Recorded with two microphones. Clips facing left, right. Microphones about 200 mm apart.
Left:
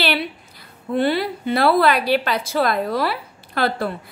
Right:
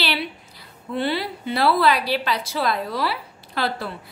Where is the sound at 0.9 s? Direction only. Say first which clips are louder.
Left 5 dB; 50° left (ahead or behind).